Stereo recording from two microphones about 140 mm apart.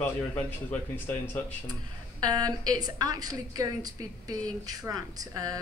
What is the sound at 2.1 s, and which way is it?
A woman's voice, 25° right (ahead or behind).